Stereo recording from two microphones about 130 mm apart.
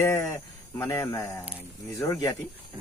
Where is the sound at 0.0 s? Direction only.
20° left (ahead or behind).